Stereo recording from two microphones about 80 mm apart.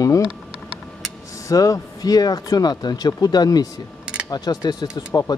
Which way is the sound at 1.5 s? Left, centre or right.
Left.